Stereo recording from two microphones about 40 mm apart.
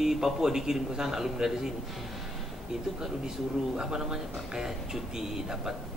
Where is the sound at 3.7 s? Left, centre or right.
Centre.